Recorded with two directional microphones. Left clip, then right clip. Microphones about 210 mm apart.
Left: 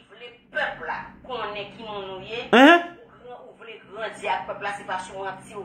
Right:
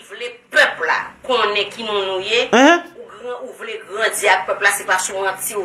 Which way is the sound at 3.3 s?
45° right (ahead or behind).